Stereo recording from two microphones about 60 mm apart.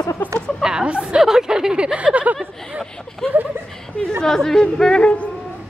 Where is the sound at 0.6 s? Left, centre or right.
Centre.